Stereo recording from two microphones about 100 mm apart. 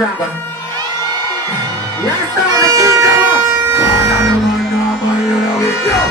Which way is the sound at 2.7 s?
35° right (ahead or behind).